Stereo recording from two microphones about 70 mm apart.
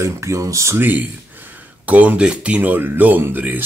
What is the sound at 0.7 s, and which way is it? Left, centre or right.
Speech, right.